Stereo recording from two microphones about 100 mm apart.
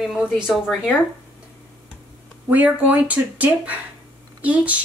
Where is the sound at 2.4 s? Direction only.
15° right (ahead or behind).